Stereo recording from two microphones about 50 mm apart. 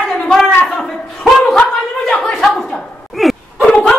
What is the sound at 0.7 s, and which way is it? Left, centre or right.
Chuckle, centre.